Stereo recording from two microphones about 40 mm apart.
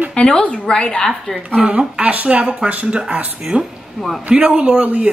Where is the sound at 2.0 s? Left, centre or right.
Right.